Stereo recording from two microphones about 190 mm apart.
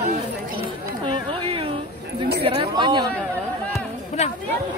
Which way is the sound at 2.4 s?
25° right (ahead or behind).